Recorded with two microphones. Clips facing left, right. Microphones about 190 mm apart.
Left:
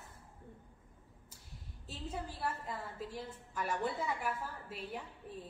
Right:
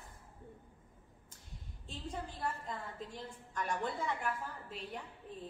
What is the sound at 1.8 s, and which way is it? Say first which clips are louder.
A woman's voice: left 1 dB; 5° left (ahead or behind).